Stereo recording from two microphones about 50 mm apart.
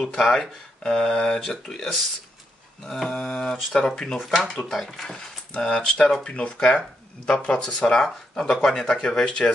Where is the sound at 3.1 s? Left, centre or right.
Centre.